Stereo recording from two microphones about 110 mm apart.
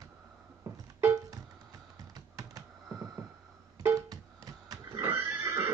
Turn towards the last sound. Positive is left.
turn(degrees=-20)  # may be behind; listen again after turning